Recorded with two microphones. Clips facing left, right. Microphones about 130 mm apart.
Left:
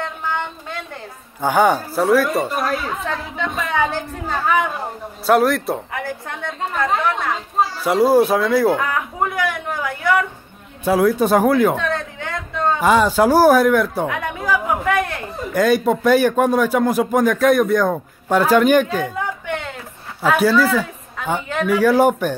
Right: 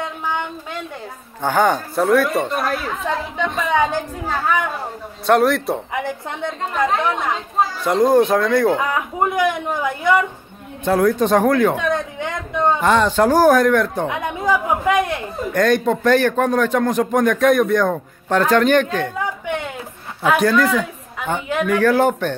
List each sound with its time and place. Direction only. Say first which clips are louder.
0.0 s a sound: even; 10° right (ahead or behind)
1.4 s speech: left 1 dB; 10° left (ahead or behind)
6.0 s speech: right 2 dB; 20° right (ahead or behind)
7.8 s speech: even; 5° left (ahead or behind)
8.7 s speech: right 1 dB; 15° right (ahead or behind)
10.8 s speech: even; 5° left (ahead or behind)
11.7 s speech: right 2 dB; 15° right (ahead or behind)
12.8 s speech: left 3 dB; 5° left (ahead or behind)
14.0 s speech: right 2 dB; 20° right (ahead or behind)
15.5 s speech: left 1 dB; 5° left (ahead or behind)
19.1 s a sound: right 1 dB; 10° right (ahead or behind)
20.2 s speech: even; 5° left (ahead or behind)